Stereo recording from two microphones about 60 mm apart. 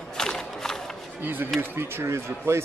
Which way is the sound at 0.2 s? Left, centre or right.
Centre.